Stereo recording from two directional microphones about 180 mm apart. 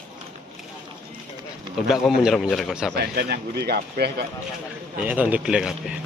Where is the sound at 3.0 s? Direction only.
60° right (ahead or behind).